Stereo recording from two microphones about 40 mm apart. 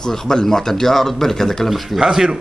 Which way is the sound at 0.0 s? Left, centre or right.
Centre.